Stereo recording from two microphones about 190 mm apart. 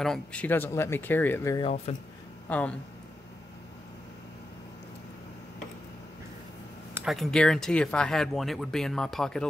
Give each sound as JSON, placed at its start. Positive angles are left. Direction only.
{"t": 0.0, "sound": "speech", "side_deg": 5}
{"t": 1.6, "sound": "speech", "side_deg": 35}
{"t": 2.5, "sound": "speech", "side_deg": 10}
{"t": 7.1, "sound": "speech", "side_deg": 0}